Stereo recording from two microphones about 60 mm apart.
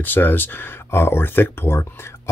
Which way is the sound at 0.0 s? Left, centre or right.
Left.